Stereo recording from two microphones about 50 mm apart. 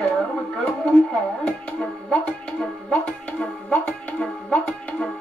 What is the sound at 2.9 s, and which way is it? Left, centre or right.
Speech, left.